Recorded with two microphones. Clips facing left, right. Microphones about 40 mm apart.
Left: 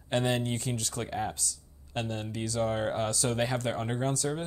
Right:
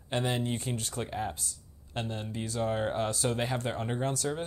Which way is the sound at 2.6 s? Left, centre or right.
Left.